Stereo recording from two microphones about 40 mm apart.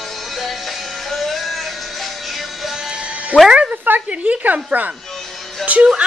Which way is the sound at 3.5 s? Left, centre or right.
Right.